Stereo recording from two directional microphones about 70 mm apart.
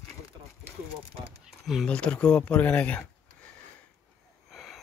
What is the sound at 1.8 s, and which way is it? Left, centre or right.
Speech, centre.